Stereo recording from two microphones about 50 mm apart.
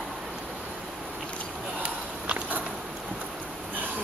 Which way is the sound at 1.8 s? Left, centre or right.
Right.